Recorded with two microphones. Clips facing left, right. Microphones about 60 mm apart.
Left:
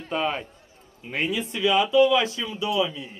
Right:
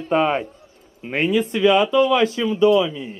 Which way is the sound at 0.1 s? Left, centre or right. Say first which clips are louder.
Right 8 dB; right.